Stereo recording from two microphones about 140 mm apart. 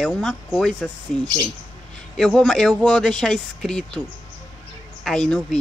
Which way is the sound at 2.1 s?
Centre (ahead or behind).